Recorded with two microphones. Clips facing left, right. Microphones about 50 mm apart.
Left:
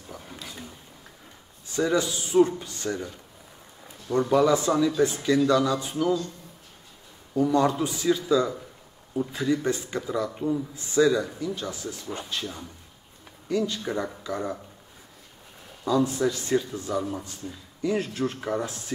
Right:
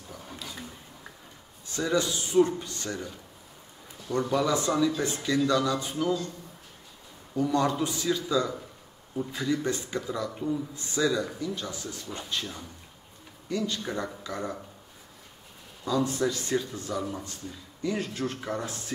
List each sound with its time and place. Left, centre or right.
1.8 s speech: centre
4.1 s speech: centre
7.4 s speech: centre
15.8 s speech: centre